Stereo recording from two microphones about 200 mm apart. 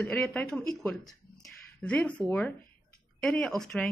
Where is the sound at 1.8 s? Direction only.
5° left (ahead or behind).